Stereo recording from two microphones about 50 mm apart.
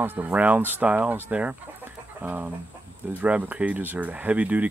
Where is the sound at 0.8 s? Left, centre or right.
Right.